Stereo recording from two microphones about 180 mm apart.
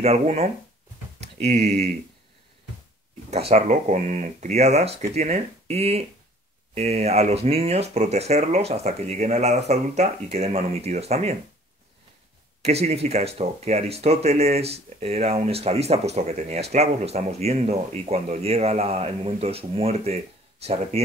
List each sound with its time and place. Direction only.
0.0 s speech: 35° right (ahead or behind)
1.2 s a sound: 40° right (ahead or behind)
3.3 s speech: 35° right (ahead or behind)
12.6 s speech: 35° right (ahead or behind)